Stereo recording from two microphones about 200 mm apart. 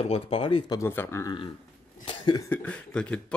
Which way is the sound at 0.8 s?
10° left (ahead or behind).